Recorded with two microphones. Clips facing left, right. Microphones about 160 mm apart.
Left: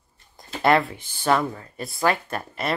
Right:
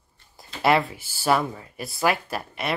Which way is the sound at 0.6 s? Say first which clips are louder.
Left 1 dB; 5° right (ahead or behind).